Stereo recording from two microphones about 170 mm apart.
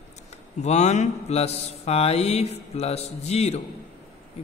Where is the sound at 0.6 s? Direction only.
40° left (ahead or behind).